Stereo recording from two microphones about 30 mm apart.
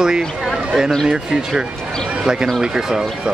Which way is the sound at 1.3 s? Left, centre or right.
Centre.